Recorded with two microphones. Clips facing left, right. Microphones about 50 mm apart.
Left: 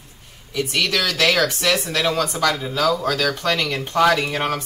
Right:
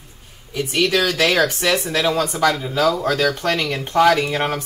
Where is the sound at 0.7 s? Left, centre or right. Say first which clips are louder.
Right 4 dB; centre.